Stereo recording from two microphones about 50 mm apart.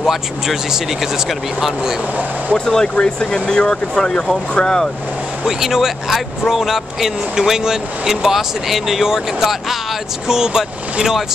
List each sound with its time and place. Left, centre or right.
0.0 s speech: centre
2.5 s speech: centre
5.4 s speech: centre